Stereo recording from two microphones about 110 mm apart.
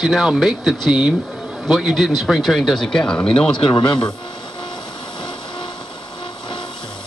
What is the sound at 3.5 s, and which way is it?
Speech, 45° left (ahead or behind).